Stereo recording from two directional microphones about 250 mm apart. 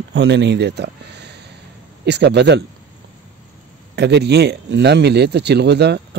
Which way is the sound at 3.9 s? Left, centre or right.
Right.